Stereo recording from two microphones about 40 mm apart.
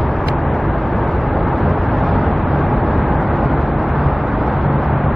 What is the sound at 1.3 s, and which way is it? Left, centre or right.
Vehicle, centre.